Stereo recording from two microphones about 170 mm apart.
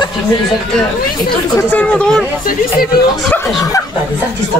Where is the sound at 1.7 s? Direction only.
5° left (ahead or behind).